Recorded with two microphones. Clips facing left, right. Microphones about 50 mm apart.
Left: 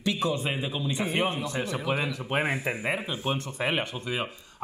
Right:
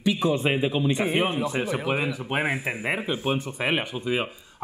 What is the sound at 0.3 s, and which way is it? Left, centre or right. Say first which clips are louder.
Speech: right 6 dB; right.